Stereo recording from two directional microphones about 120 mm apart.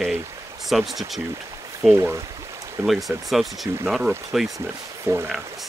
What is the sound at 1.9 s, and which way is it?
Speech, 20° right (ahead or behind).